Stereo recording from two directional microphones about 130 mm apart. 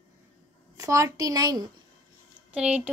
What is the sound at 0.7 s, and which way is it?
Speech, 25° right (ahead or behind).